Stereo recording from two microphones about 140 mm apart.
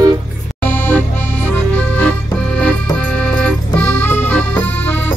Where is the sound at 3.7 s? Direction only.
10° left (ahead or behind).